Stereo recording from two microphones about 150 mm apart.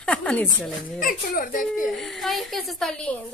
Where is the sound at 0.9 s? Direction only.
70° left (ahead or behind).